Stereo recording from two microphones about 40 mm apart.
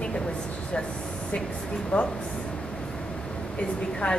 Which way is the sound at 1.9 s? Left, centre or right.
Left.